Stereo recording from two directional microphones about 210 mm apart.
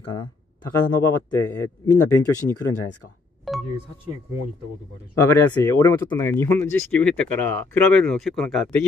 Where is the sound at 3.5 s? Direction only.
Centre (ahead or behind).